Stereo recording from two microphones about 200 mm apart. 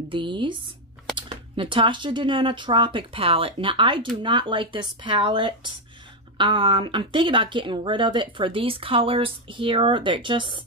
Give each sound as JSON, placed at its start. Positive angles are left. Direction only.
{"t": 0.1, "sound": "speech", "side_deg": -25}